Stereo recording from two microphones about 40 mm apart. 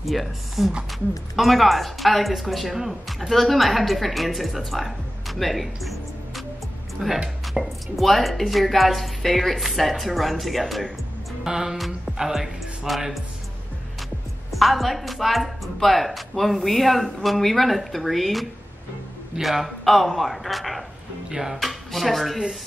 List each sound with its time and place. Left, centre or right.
0.0 s a woman's voice: centre
7.0 s speech: centre
7.5 s a woman's voice: centre
11.4 s speech: centre
14.5 s a woman's voice: centre
21.3 s speech: centre
21.5 s speech: centre